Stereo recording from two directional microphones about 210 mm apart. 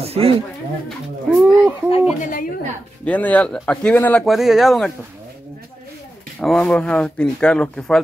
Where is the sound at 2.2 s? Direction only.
40° left (ahead or behind).